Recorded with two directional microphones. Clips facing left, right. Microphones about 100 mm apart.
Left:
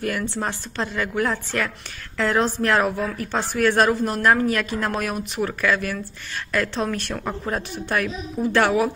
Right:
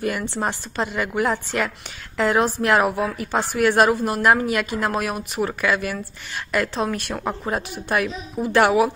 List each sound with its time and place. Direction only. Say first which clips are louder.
0.0 s a woman's voice: right 1 dB; 15° right (ahead or behind)